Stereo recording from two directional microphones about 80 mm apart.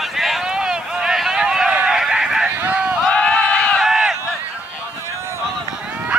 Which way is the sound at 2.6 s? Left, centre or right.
Right.